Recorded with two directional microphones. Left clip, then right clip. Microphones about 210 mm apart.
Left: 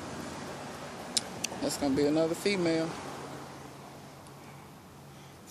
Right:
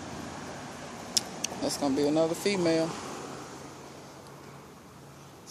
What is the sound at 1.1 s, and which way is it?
Speech, centre (ahead or behind).